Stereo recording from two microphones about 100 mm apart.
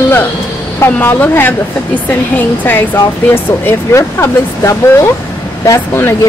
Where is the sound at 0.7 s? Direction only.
20° left (ahead or behind).